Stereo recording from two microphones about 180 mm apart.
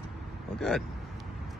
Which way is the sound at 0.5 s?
Centre (ahead or behind).